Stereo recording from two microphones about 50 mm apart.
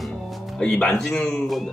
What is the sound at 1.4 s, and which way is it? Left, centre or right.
Speech, centre.